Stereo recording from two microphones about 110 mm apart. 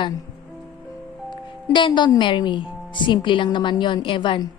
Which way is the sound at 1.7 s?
45° left (ahead or behind).